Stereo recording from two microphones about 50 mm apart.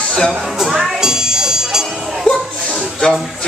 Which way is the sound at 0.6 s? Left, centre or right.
Centre.